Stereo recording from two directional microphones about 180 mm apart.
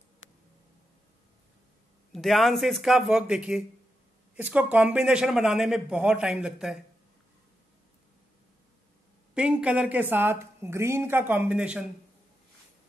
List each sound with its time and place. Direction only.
0.2 s a sound: 90° left
2.1 s a man's voice: centre (ahead or behind)
9.3 s a woman's voice: 5° right (ahead or behind)